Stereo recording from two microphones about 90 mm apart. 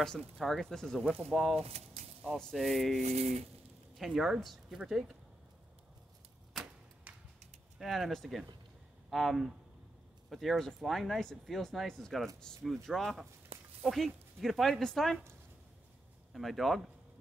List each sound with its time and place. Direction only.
0.4 s speech: 5° left (ahead or behind)
7.1 s a sound: 15° right (ahead or behind)
7.8 s speech: centre (ahead or behind)
16.3 s speech: centre (ahead or behind)